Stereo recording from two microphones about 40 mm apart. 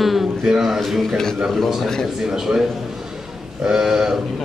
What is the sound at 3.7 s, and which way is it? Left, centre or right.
Speech, centre.